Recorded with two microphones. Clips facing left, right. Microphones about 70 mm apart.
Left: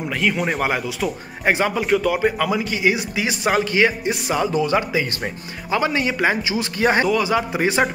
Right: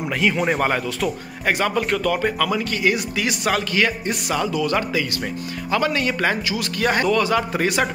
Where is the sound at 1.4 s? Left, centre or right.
Centre.